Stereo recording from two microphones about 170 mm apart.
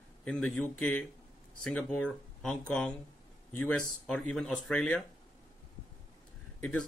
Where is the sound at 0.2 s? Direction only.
5° left (ahead or behind).